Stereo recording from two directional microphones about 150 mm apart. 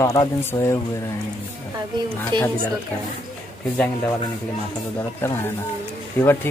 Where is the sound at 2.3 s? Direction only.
30° right (ahead or behind).